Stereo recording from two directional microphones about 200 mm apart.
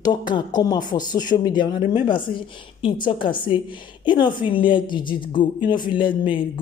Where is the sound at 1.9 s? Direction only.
25° left (ahead or behind).